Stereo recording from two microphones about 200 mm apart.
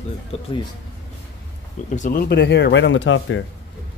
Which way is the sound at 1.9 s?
45° left (ahead or behind).